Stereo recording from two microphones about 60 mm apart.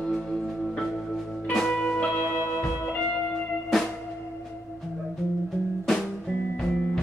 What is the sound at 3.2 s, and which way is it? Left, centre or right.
Music, centre.